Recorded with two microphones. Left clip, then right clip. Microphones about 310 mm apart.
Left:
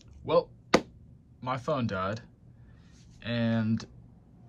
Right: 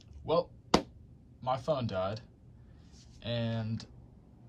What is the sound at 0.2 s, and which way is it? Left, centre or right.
Speech, centre.